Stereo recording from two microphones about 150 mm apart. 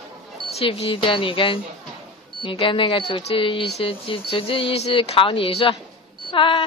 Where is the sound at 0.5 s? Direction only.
40° left (ahead or behind).